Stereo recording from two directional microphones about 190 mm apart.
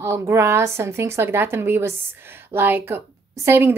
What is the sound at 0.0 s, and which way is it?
A woman's voice, 15° right (ahead or behind).